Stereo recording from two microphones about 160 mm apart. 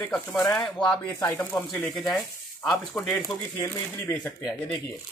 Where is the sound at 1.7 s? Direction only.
Centre (ahead or behind).